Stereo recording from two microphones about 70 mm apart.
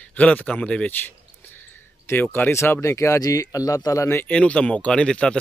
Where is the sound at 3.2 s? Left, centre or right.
Left.